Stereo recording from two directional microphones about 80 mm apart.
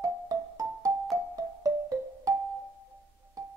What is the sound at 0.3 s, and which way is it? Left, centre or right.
Music, right.